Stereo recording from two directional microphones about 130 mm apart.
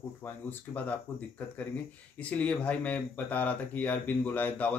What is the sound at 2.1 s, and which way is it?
Speech, 10° left (ahead or behind).